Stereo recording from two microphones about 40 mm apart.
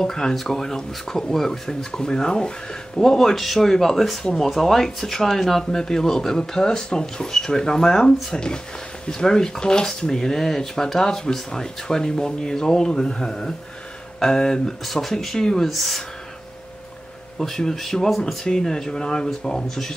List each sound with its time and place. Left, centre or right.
0.0 s speech: centre
15.3 s speech: centre
15.7 s speech: centre
17.4 s speech: centre